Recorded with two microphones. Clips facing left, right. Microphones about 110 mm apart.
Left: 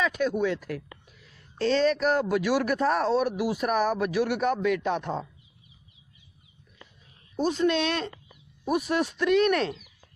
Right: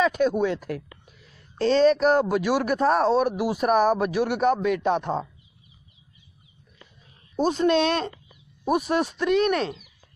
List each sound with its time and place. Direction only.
0.0 s a man's voice: 35° right (ahead or behind)
7.3 s a man's voice: 35° right (ahead or behind); by 9.8 s 20° right (ahead or behind)